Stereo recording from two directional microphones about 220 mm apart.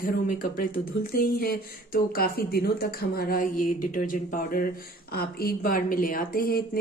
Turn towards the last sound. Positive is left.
turn(degrees=40)  # may be behind; listen again after turning